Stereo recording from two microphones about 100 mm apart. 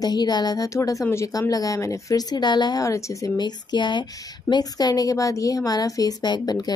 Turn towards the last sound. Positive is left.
turn(degrees=40)  # may be behind; listen again after turning